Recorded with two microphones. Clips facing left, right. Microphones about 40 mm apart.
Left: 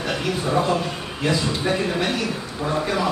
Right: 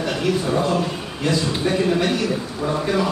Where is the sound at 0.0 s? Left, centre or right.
Centre.